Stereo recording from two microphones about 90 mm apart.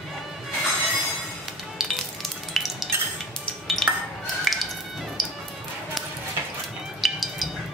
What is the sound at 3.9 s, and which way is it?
Music, 20° right (ahead or behind).